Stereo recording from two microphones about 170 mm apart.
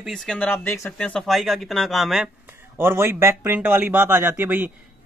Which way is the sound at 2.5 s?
15° right (ahead or behind).